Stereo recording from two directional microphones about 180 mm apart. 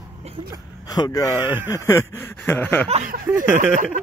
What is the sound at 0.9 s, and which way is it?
Speech, 20° left (ahead or behind).